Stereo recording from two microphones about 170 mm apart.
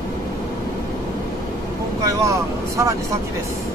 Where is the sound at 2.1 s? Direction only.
20° right (ahead or behind).